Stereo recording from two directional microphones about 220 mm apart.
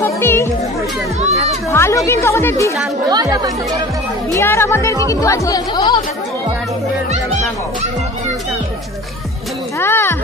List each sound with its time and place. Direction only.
0.0 s music: 10° left (ahead or behind)
1.7 s a woman's voice: 10° left (ahead or behind)
3.1 s speech: 15° right (ahead or behind)
4.3 s a woman's voice: 10° left (ahead or behind)
9.8 s a woman's voice: 10° left (ahead or behind)